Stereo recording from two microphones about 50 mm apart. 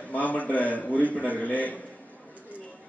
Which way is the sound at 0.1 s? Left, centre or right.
Left.